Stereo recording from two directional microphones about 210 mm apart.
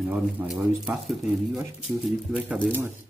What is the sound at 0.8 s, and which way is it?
Speech, centre (ahead or behind).